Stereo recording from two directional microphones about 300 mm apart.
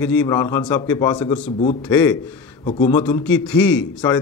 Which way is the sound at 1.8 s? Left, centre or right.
Centre.